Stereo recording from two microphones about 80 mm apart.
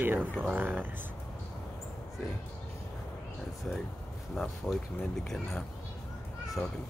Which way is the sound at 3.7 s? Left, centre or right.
Centre.